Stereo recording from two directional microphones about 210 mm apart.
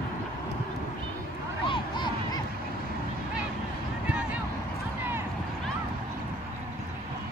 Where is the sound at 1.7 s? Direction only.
20° left (ahead or behind).